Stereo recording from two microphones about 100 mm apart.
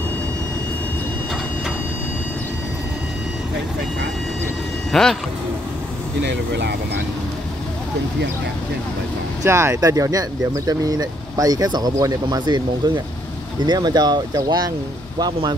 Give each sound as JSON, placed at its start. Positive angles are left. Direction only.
{"t": 4.9, "sound": "speech", "side_deg": 5}
{"t": 9.4, "sound": "speech", "side_deg": -25}
{"t": 9.8, "sound": "speech", "side_deg": -35}